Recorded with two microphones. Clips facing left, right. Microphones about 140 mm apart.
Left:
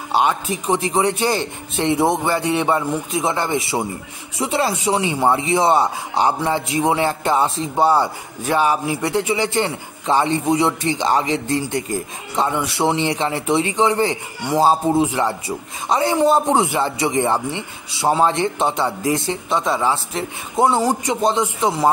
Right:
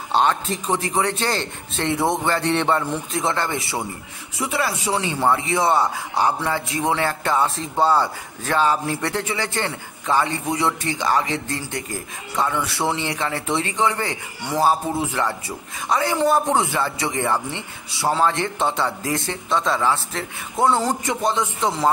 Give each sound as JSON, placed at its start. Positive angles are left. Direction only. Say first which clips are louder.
{"t": 0.1, "sound": "a man's voice", "louder": "left 1 dB", "side_deg": 10}